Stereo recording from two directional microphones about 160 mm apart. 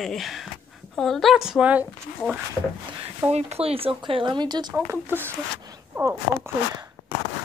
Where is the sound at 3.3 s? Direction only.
40° right (ahead or behind); by 6.5 s 15° right (ahead or behind).